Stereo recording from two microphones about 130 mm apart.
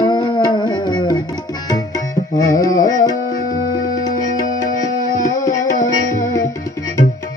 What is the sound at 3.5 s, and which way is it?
Music, 90° left.